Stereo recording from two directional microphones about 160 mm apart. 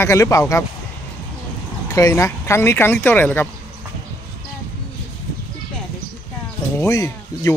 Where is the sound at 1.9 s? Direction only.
20° left (ahead or behind).